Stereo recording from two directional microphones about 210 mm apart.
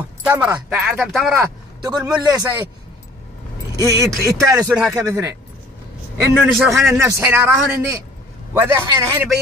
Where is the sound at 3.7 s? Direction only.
15° right (ahead or behind).